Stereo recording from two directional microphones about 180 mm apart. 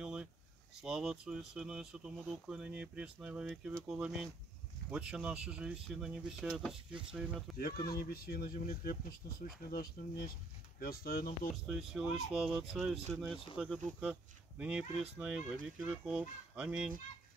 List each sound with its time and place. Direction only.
0.0 s a sound: 5° right (ahead or behind)
0.8 s speech: 5° right (ahead or behind)
7.5 s speech: 55° left (ahead or behind)
11.5 s speech: centre (ahead or behind)